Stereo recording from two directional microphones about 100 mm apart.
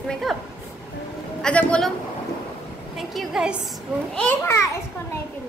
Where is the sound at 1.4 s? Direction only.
10° left (ahead or behind).